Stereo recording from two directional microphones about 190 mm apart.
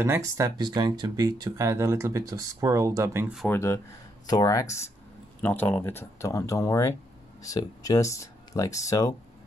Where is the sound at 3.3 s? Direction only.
5° left (ahead or behind).